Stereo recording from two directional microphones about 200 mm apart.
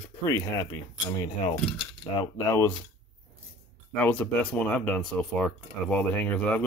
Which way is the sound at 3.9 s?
5° left (ahead or behind).